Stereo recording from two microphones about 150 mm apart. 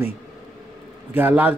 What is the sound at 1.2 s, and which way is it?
Speech, 10° right (ahead or behind).